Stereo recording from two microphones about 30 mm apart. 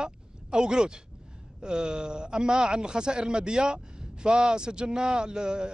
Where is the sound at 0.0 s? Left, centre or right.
Right.